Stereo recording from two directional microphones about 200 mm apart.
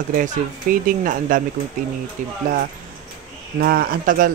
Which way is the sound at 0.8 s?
40° right (ahead or behind).